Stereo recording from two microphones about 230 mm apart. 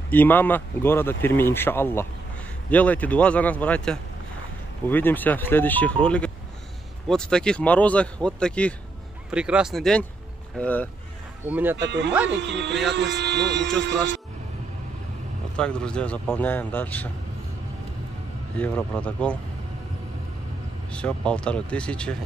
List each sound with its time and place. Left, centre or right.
0.1 s speech: centre
11.5 s speech: centre
12.3 s speech: right
15.5 s speech: centre
18.6 s speech: centre
20.9 s speech: centre